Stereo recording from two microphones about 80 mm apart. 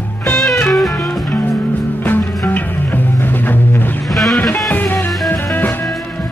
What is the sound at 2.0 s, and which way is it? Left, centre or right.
Music, left.